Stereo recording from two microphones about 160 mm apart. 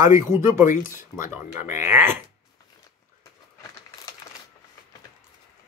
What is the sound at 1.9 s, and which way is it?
Speech, 15° right (ahead or behind).